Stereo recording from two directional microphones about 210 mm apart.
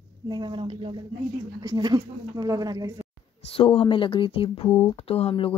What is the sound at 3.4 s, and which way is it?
Speech, 25° left (ahead or behind).